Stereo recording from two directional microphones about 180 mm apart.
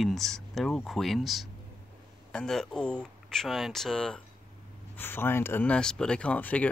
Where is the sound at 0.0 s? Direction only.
Centre (ahead or behind).